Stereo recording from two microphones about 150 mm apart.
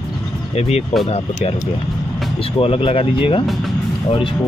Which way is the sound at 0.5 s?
45° left (ahead or behind).